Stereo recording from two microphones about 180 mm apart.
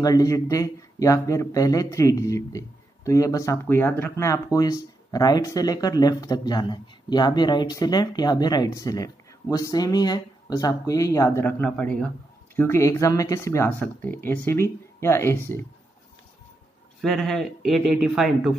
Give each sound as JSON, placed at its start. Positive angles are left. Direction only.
{"t": 0.0, "sound": "speech", "side_deg": 20}
{"t": 17.0, "sound": "speech", "side_deg": 0}